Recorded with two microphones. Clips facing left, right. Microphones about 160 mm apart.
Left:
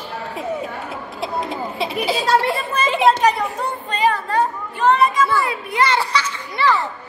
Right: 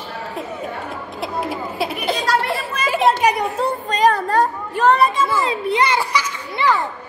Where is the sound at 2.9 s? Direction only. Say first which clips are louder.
Even; 5° right (ahead or behind).